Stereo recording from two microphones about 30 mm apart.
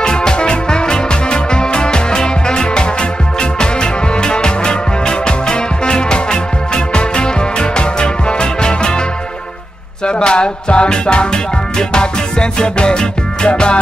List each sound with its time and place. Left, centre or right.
0.0 s music: left
10.0 s music: left